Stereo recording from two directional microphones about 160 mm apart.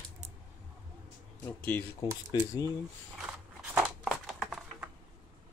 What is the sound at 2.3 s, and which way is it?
Speech, 25° left (ahead or behind).